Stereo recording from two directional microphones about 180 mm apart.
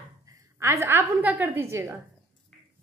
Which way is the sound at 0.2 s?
15° right (ahead or behind).